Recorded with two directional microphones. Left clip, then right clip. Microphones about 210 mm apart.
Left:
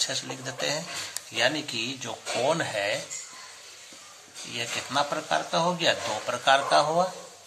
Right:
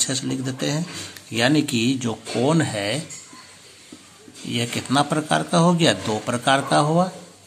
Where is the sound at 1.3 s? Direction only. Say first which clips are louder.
Right 6 dB; 35° right (ahead or behind).